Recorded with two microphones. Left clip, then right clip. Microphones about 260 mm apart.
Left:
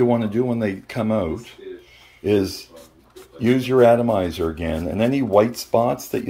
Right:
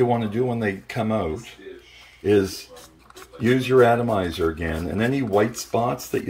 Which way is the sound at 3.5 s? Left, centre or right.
Right.